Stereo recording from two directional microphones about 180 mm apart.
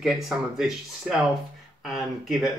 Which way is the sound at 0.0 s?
Centre (ahead or behind).